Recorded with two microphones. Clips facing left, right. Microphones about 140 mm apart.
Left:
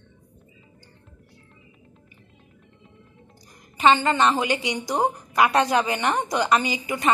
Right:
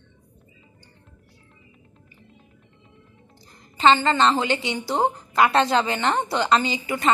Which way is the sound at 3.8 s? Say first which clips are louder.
Right 1 dB; 15° left (ahead or behind).